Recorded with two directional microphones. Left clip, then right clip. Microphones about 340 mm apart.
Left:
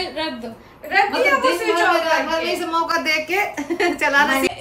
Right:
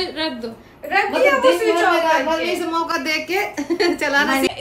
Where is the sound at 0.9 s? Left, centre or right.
Centre.